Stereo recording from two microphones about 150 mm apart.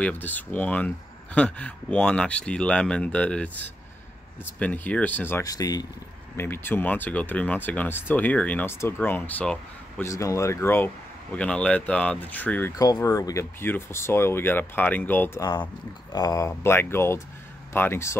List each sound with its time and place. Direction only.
0.0 s speech: 10° left (ahead or behind)
6.3 s speech: 15° left (ahead or behind)
10.0 s speech: 20° left (ahead or behind)
12.7 s speech: 25° left (ahead or behind)
16.1 s speech: 25° left (ahead or behind)